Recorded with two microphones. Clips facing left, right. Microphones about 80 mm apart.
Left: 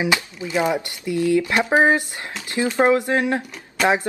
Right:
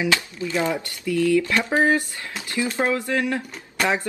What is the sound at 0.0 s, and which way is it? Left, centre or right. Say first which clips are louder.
Speech: left 1 dB; centre.